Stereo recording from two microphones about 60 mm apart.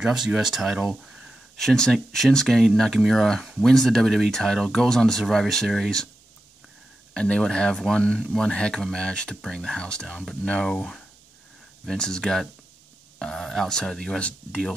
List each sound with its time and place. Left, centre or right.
0.0 s speech: centre
1.6 s speech: centre
7.2 s speech: centre
10.7 s speech: centre